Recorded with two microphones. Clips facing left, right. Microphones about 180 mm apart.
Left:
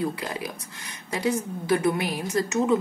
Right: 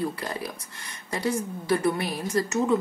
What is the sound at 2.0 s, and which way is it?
Speech, 15° left (ahead or behind).